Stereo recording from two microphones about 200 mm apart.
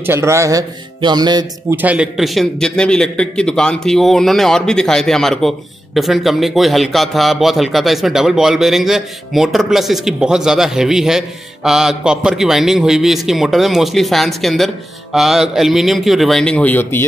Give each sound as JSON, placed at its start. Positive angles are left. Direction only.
{"t": 0.0, "sound": "speech", "side_deg": -15}
{"t": 1.8, "sound": "a man's voice", "side_deg": -5}